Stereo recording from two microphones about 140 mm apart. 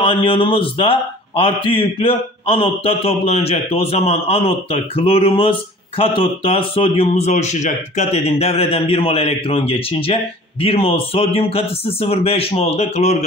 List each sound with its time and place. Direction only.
0.0 s a man's voice: 40° left (ahead or behind)
7.1 s a man's voice: 55° left (ahead or behind)